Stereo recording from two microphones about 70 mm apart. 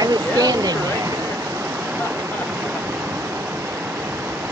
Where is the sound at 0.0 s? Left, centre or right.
Right.